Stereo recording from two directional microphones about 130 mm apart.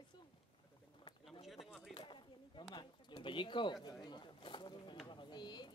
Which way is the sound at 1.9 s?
35° left (ahead or behind).